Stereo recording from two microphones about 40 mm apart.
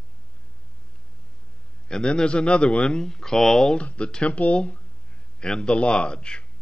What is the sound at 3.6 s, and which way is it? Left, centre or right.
Speech, left.